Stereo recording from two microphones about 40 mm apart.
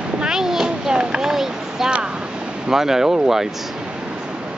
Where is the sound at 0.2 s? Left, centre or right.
Centre.